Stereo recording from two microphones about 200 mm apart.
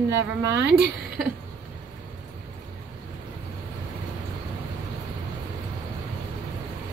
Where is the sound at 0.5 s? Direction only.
65° right (ahead or behind).